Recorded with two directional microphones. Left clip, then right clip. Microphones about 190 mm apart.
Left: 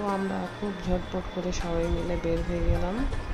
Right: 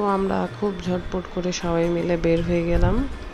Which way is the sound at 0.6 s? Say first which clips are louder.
Right 6 dB; 20° right (ahead or behind).